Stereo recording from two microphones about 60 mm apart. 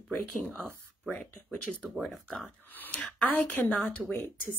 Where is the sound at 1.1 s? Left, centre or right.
Left.